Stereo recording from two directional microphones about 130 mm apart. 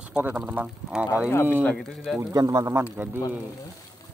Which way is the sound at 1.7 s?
Centre (ahead or behind).